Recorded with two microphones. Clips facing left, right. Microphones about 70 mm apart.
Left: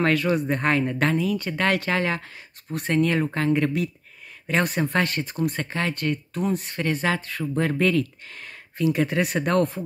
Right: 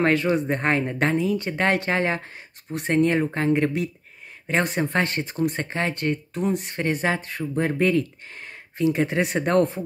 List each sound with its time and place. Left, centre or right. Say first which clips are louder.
0.0 s speech: right 1 dB; right